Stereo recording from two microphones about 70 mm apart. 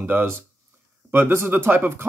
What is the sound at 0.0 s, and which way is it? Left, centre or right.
Speech, right.